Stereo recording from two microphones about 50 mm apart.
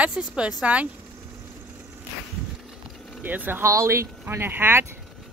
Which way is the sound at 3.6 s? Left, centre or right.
Right.